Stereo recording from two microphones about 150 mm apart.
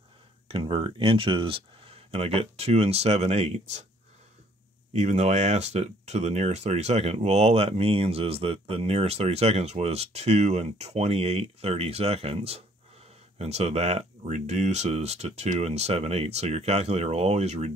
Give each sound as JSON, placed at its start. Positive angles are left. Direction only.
{"t": 0.5, "sound": "speech", "side_deg": -35}
{"t": 4.9, "sound": "speech", "side_deg": -50}